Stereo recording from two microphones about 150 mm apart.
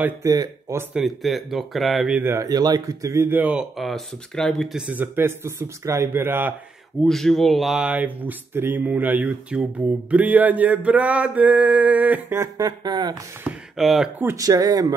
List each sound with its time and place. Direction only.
0.0 s speech: 20° right (ahead or behind)
0.9 s speech: centre (ahead or behind)
7.1 s speech: centre (ahead or behind); by 13.1 s 30° right (ahead or behind)
13.4 s speech: 5° right (ahead or behind)
14.1 s speech: 20° right (ahead or behind)